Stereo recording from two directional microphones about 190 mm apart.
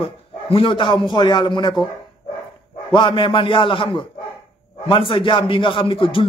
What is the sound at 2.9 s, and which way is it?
A man's voice, 25° left (ahead or behind).